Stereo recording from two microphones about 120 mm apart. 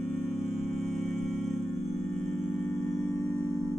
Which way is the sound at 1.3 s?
5° left (ahead or behind).